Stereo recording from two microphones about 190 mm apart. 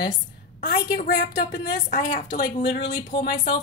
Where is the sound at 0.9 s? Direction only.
50° left (ahead or behind).